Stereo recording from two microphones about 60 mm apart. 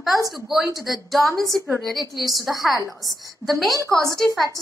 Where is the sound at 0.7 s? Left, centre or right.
Centre.